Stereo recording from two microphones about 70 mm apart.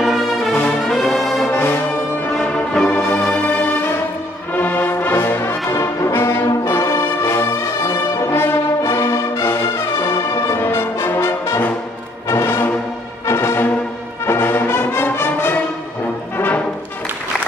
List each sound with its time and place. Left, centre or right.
0.0 s brass instrument: centre
1.5 s brass instrument: left
2.5 s music: centre
2.9 s music: left
4.6 s brass instrument: left
12.3 s music: left
14.2 s brass instrument: left
15.0 s music: left